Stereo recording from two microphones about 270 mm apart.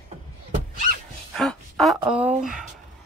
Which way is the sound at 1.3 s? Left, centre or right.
Centre.